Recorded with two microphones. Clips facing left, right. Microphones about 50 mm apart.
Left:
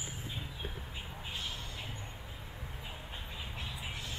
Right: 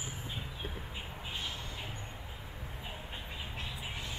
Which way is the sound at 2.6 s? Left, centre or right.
Centre.